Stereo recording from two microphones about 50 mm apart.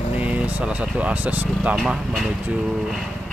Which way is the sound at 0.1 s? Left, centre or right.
Right.